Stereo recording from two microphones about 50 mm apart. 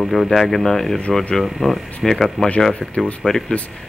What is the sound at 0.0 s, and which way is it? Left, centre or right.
Speech, centre.